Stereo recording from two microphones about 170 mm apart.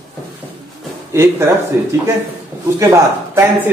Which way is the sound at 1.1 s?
15° right (ahead or behind).